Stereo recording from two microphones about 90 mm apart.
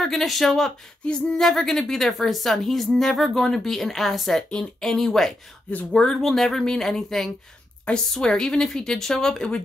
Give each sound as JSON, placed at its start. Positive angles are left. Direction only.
{"t": 0.0, "sound": "speech", "side_deg": 0}
{"t": 5.7, "sound": "a woman's voice", "side_deg": 15}
{"t": 6.0, "sound": "a woman's voice", "side_deg": 5}